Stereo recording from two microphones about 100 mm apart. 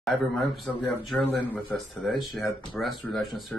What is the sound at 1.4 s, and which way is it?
Speech, 15° left (ahead or behind).